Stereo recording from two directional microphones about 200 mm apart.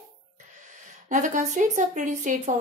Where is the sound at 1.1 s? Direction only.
40° right (ahead or behind).